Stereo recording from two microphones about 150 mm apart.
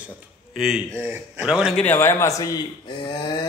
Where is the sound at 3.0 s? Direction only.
30° left (ahead or behind).